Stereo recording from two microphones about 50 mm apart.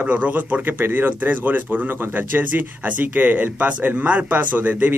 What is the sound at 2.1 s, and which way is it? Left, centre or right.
Speech, right.